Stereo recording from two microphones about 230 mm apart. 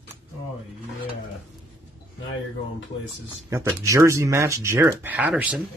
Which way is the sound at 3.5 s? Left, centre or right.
Centre.